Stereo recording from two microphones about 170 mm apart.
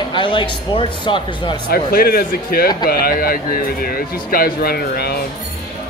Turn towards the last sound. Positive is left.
turn(degrees=65)  # may be behind; listen again after turning